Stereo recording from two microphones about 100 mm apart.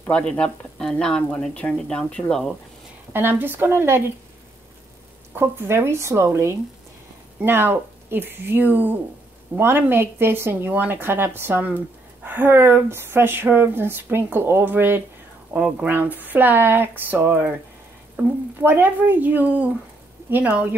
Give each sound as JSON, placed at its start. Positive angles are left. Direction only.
{"t": 0.0, "sound": "speech", "side_deg": 10}
{"t": 3.1, "sound": "speech", "side_deg": -20}
{"t": 5.3, "sound": "speech", "side_deg": -20}